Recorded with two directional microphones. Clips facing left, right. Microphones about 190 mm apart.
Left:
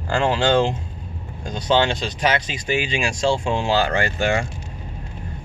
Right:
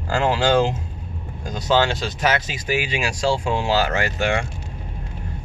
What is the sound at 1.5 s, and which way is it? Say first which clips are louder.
Speech: even; 25° left (ahead or behind).